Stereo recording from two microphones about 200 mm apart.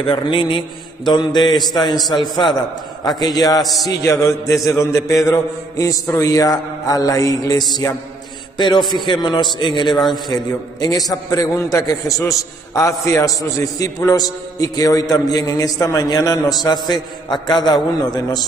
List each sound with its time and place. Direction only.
0.0 s mantra: 25° left (ahead or behind)
4.6 s a man's voice: 15° left (ahead or behind)
8.5 s mantra: 20° left (ahead or behind)
10.2 s a man's voice: 20° left (ahead or behind)